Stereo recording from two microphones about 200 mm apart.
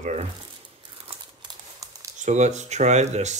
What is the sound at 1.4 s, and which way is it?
Crumpling, 15° right (ahead or behind).